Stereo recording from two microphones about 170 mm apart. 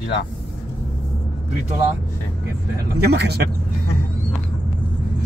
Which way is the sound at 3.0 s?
75° right (ahead or behind).